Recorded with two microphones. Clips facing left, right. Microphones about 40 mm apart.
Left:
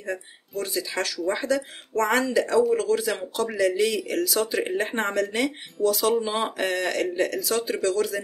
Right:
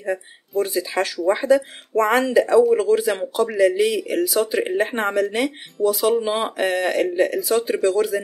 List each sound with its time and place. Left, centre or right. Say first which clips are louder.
0.0 s speech: right 6 dB; right